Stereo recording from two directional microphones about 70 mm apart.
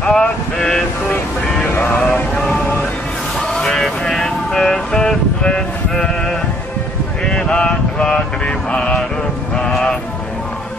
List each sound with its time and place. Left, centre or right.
0.0 s vehicle: centre
1.8 s vehicle: left
7.2 s mantra: centre
9.6 s a sound: centre